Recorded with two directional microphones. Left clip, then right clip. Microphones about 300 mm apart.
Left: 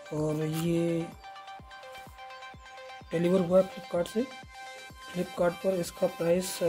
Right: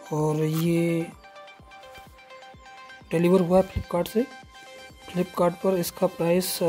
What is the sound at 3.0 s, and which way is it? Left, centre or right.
Speech, right.